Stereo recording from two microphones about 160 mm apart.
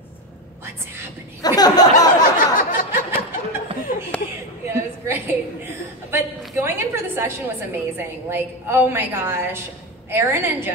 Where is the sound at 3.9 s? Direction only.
55° left (ahead or behind).